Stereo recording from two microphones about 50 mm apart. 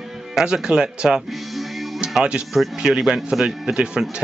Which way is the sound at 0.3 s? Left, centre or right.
Centre.